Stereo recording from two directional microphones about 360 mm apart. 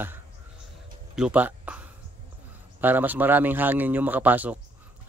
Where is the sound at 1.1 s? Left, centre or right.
Centre.